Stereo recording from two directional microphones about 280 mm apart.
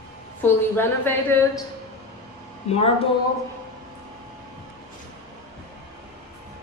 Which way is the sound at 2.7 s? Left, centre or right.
Left.